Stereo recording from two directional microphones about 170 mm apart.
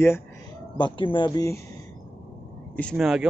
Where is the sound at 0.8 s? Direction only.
30° left (ahead or behind).